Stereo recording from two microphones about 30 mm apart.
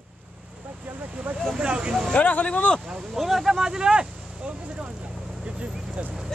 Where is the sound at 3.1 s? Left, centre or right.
Centre.